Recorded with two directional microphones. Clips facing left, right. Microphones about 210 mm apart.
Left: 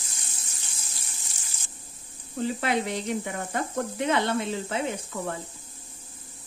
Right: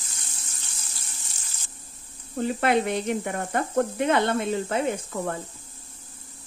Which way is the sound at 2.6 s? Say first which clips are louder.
Right 8 dB; 55° right (ahead or behind).